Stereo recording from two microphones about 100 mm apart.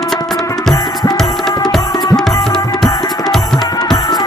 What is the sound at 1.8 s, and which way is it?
Music, 40° left (ahead or behind).